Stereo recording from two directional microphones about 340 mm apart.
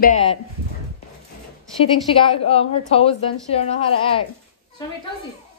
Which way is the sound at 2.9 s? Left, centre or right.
Centre.